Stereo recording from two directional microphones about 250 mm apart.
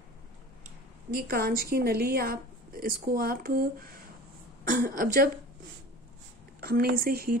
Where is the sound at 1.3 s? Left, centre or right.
Right.